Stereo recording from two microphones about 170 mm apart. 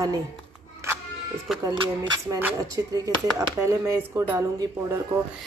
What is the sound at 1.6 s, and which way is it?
A woman's voice, 25° right (ahead or behind).